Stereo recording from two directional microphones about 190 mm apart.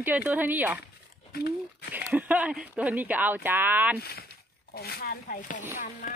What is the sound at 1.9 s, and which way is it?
Speech, 10° right (ahead or behind).